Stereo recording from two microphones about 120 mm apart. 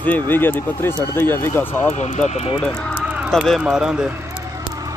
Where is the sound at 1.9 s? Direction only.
70° left (ahead or behind).